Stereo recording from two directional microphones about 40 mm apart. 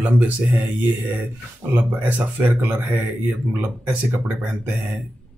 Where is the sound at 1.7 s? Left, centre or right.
Right.